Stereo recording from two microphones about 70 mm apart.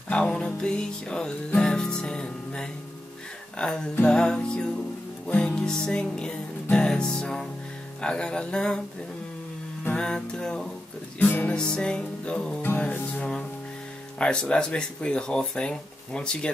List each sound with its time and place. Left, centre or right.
0.1 s music: centre
3.5 s speech: centre
9.9 s speech: centre
11.1 s music: left
11.7 s speech: centre
12.6 s music: left
14.1 s speech: centre